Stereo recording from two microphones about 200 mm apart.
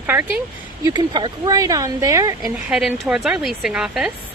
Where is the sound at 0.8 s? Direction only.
20° right (ahead or behind).